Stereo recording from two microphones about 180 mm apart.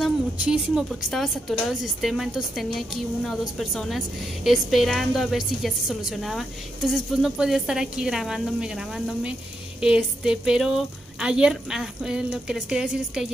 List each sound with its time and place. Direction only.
0.0 s a woman's voice: 5° right (ahead or behind)